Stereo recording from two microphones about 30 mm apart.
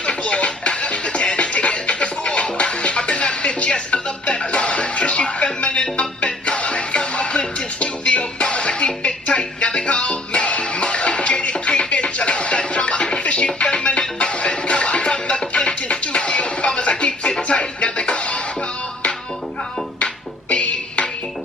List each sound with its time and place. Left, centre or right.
0.0 s music: left
20.0 s music: left